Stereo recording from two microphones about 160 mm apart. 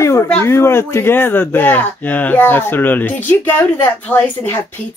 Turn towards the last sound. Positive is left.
turn(degrees=10)  # may be behind; listen again after turning